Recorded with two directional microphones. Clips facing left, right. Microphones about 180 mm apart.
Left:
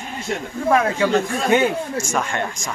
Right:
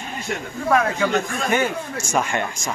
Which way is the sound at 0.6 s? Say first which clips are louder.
Left 2 dB; 15° left (ahead or behind).